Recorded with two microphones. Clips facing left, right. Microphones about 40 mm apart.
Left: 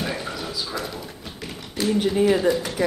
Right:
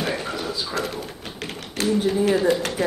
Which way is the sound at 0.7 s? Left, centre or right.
Right.